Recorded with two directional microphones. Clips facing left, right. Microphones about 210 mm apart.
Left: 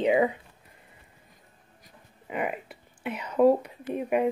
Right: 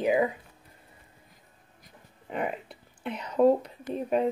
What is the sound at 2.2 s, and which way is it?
Speech, 5° left (ahead or behind).